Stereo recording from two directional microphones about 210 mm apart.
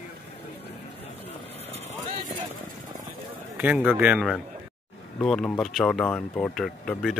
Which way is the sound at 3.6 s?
5° right (ahead or behind).